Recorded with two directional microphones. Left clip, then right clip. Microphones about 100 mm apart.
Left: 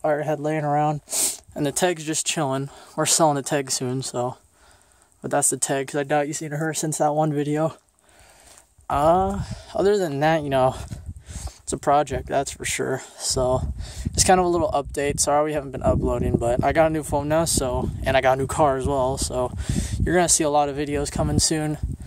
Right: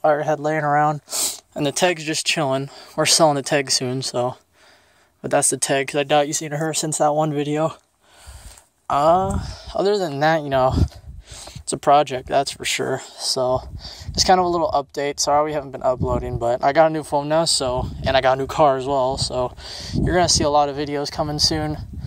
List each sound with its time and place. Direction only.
0.0 s speech: 20° left (ahead or behind); by 1.4 s 55° left (ahead or behind)
1.5 s speech: 15° left (ahead or behind)
5.9 s speech: 15° left (ahead or behind)
6.7 s speech: 30° left (ahead or behind)
8.8 s speech: 35° left (ahead or behind)
10.2 s speech: 35° left (ahead or behind)
11.3 s speech: 15° left (ahead or behind)
13.2 s speech: 45° left (ahead or behind)
16.4 s speech: 35° left (ahead or behind)
19.6 s speech: 50° left (ahead or behind)